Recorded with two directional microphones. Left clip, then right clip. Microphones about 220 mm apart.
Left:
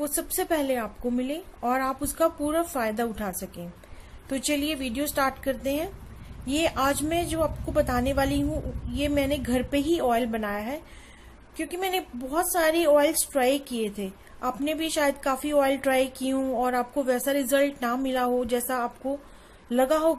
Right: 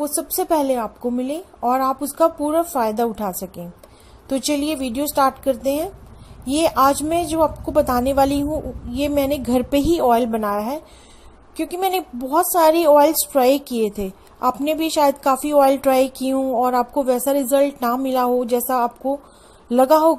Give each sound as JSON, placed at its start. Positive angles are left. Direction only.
{"t": 0.0, "sound": "a woman's voice", "side_deg": -15}